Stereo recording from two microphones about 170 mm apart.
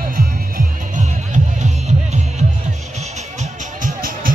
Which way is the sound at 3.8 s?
55° right (ahead or behind).